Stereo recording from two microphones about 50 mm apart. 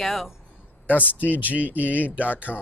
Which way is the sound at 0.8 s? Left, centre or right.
Left.